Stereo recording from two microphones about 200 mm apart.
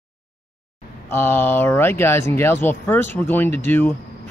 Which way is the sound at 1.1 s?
10° left (ahead or behind).